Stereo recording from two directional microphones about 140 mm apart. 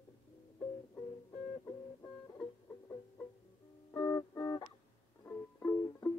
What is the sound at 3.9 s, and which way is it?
Music, 15° left (ahead or behind).